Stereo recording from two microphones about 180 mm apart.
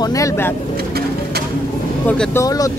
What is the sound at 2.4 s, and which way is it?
Speech, 20° left (ahead or behind).